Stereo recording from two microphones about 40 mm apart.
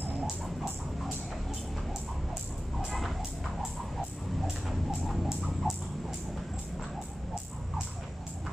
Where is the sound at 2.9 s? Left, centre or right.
Centre.